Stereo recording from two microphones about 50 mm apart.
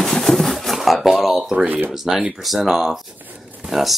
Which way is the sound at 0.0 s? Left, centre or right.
Centre.